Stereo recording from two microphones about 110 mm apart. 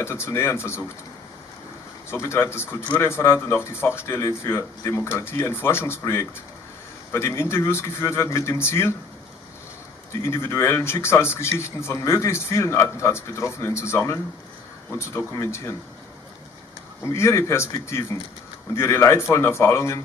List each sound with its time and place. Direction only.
0.0 s speech: 25° left (ahead or behind)
2.0 s speech: 25° left (ahead or behind)
10.2 s speech: 25° left (ahead or behind)
17.0 s speech: 25° left (ahead or behind)